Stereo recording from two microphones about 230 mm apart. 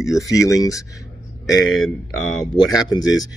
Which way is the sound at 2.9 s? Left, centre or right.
Centre.